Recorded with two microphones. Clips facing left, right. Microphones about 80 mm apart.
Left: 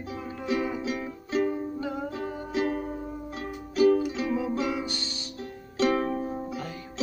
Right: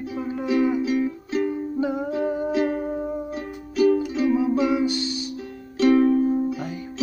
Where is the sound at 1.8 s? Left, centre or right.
Centre.